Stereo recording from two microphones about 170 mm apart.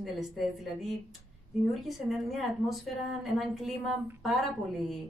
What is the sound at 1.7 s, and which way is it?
A woman's voice, centre (ahead or behind).